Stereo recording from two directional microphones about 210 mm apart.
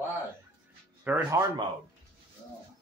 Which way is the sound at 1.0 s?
10° right (ahead or behind).